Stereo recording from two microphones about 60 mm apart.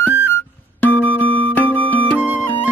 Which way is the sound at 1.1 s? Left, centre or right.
Left.